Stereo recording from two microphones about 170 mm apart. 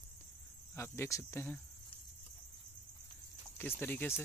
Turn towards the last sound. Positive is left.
turn(degrees=15)  # may be behind; listen again after turning